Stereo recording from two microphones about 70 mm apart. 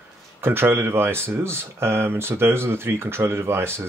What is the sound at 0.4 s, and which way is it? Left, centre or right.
Speech, right.